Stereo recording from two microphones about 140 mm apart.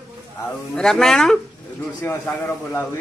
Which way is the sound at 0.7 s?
5° left (ahead or behind).